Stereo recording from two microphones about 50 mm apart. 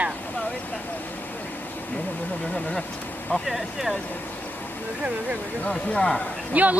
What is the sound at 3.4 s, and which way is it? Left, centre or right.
Speech, centre.